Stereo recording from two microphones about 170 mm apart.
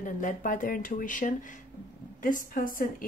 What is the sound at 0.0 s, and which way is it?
A woman's voice, 50° left (ahead or behind).